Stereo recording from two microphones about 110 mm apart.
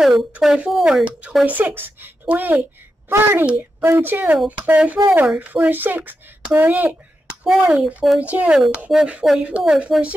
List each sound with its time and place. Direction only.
0.4 s speech: centre (ahead or behind)
1.4 s a woman's voice: 15° right (ahead or behind)
7.4 s speech: 5° right (ahead or behind)